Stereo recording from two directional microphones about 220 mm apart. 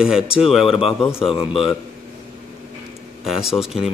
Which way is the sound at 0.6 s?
25° left (ahead or behind).